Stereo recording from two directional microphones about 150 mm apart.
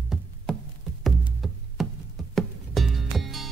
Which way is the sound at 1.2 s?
Centre (ahead or behind).